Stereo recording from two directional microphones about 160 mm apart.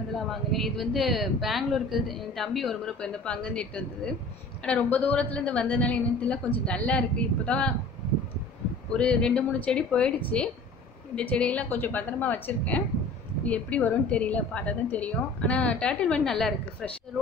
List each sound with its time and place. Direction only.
0.1 s a woman's voice: centre (ahead or behind)
8.9 s a woman's voice: 5° left (ahead or behind)